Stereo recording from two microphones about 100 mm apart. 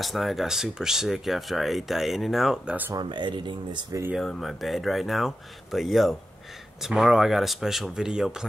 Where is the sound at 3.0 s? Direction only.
50° right (ahead or behind).